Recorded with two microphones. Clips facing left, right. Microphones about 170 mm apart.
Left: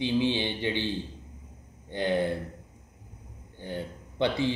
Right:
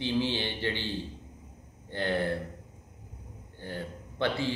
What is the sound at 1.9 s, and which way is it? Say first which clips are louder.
Speech: left 3 dB; 15° left (ahead or behind).